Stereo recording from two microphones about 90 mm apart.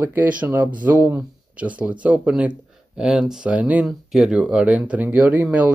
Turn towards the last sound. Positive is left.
turn(degrees=-15)  # may be behind; listen again after turning